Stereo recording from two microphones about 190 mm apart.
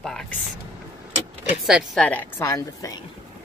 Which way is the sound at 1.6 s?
5° right (ahead or behind).